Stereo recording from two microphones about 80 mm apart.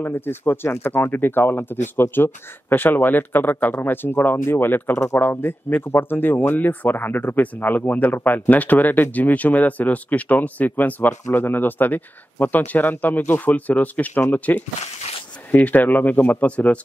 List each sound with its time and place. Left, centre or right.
0.0 s speech: left